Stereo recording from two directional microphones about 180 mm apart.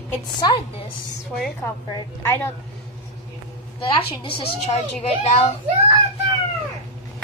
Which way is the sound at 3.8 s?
30° left (ahead or behind).